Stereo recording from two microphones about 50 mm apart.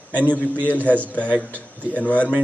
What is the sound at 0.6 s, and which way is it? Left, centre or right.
A man's voice, left.